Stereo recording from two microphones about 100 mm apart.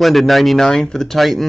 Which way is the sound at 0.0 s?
Centre (ahead or behind).